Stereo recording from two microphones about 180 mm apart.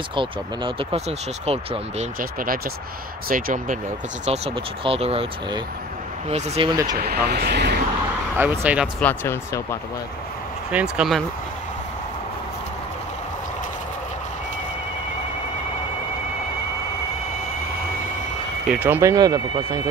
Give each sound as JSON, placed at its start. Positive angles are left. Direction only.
{"t": 0.1, "sound": "speech", "side_deg": -30}
{"t": 2.1, "sound": "speech", "side_deg": -50}
{"t": 4.3, "sound": "speech", "side_deg": -30}
{"t": 7.0, "sound": "speech", "side_deg": -60}
{"t": 8.4, "sound": "speech", "side_deg": -10}
{"t": 9.0, "sound": "speech", "side_deg": 10}
{"t": 10.7, "sound": "speech", "side_deg": -5}
{"t": 18.7, "sound": "speech", "side_deg": -10}